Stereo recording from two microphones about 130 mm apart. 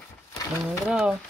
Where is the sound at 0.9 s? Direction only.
5° right (ahead or behind).